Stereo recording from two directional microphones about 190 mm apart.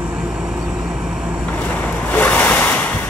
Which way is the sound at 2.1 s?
10° left (ahead or behind).